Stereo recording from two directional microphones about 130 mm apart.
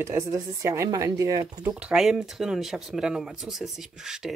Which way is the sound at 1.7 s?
5° right (ahead or behind).